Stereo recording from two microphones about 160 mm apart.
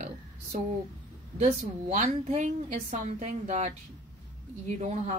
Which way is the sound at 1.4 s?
45° right (ahead or behind).